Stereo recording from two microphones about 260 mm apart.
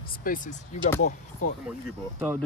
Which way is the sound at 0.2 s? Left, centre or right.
Left.